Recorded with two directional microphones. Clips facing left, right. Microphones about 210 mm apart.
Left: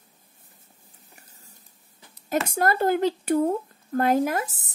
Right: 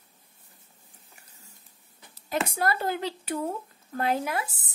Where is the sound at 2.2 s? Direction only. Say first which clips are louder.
Left 4 dB; 45° left (ahead or behind).